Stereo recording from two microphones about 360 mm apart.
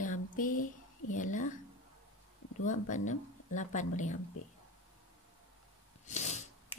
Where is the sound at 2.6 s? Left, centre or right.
Left.